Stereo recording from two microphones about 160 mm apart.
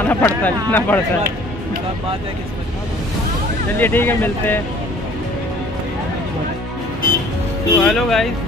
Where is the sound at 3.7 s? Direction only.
10° left (ahead or behind).